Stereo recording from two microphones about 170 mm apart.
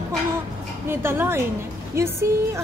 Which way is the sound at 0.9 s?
15° right (ahead or behind).